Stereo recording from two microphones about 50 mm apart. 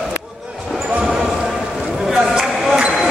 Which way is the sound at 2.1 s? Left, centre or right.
Centre.